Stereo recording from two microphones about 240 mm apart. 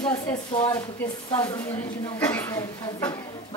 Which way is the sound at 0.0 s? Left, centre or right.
Centre.